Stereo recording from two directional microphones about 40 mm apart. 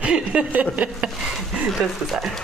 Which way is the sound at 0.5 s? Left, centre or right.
Right.